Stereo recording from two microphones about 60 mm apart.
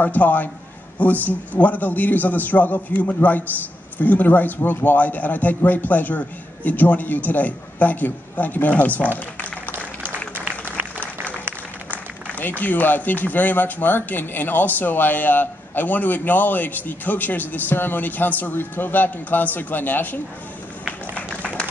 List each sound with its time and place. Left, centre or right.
0.0 s a man's voice: left
10.0 s applause: right
12.4 s speech: left